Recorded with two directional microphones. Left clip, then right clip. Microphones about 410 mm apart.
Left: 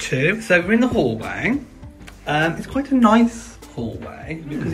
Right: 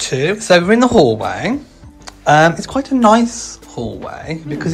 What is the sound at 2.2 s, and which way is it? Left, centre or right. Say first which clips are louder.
Speech: right 10 dB; right.